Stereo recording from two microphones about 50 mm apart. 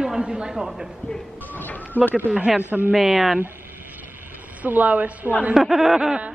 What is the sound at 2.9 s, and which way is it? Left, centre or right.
Speech, centre.